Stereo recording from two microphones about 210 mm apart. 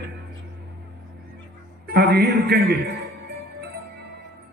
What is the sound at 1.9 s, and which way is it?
A man's voice, 50° right (ahead or behind).